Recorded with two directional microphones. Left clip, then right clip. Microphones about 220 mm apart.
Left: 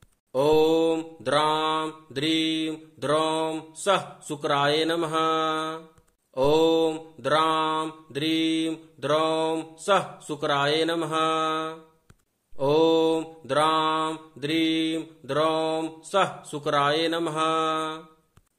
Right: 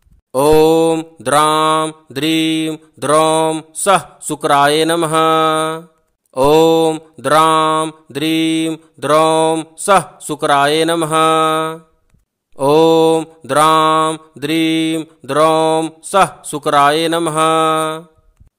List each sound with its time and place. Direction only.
0.3 s mantra: 50° right (ahead or behind)